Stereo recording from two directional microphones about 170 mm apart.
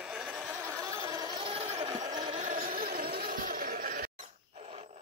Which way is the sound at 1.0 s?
25° right (ahead or behind).